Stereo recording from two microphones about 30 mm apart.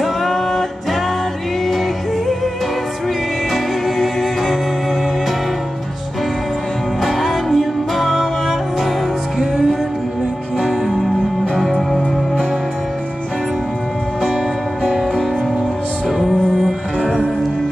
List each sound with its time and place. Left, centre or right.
0.0 s music: centre
3.5 s music: centre
7.0 s music: centre
10.6 s music: right